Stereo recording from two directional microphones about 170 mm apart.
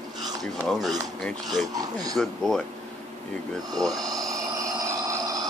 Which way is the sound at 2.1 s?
Centre (ahead or behind).